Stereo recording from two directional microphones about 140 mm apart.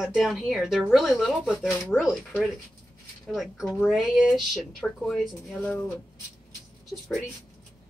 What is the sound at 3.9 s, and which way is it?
Speech, 5° right (ahead or behind).